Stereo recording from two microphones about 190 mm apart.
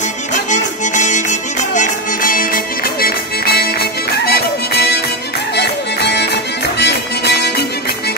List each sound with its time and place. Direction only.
0.5 s music: 40° left (ahead or behind); by 7.5 s 60° left (ahead or behind)